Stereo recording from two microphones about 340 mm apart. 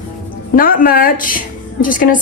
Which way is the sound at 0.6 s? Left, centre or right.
Left.